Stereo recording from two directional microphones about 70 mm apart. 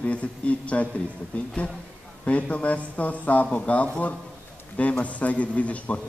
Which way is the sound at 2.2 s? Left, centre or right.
Centre.